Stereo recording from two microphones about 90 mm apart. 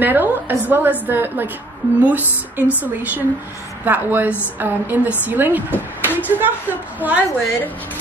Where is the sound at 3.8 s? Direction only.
20° right (ahead or behind).